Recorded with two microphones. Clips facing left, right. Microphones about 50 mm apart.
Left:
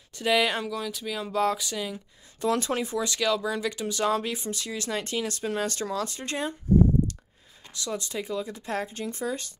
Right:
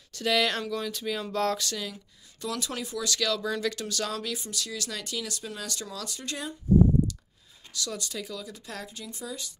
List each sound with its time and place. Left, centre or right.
0.1 s speech: centre
0.7 s speech: centre
2.4 s speech: left
7.7 s speech: left